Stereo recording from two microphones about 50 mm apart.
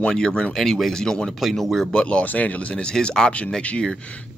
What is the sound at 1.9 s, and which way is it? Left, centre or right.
Speech, left.